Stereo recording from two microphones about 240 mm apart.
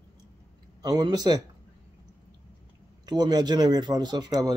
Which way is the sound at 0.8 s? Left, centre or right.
Centre.